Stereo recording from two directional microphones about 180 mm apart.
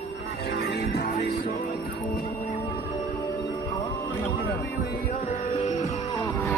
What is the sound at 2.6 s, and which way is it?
Music, 20° left (ahead or behind).